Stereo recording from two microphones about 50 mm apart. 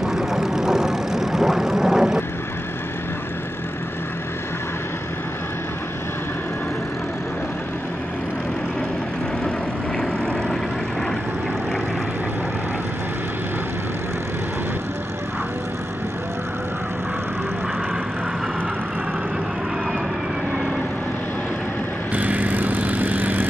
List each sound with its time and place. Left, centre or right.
0.0 s vehicle: centre
9.9 s vehicle: centre
22.1 s vehicle: right